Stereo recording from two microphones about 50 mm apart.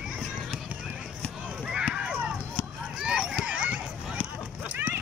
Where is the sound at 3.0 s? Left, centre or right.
Centre.